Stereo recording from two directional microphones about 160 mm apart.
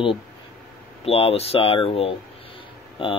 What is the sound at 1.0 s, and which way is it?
Speech, 40° left (ahead or behind).